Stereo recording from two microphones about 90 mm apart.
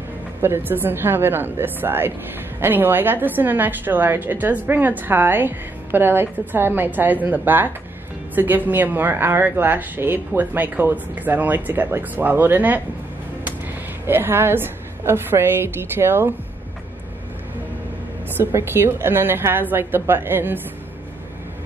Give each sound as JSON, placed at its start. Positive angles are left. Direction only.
{"t": 0.4, "sound": "a woman's voice", "side_deg": -25}
{"t": 14.0, "sound": "a woman's voice", "side_deg": -25}
{"t": 18.4, "sound": "a woman's voice", "side_deg": -25}